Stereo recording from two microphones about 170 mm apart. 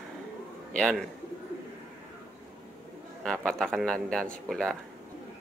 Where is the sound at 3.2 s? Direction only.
5° left (ahead or behind).